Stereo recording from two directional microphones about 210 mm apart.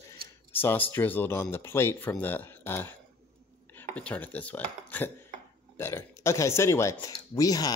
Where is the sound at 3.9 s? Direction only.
5° left (ahead or behind).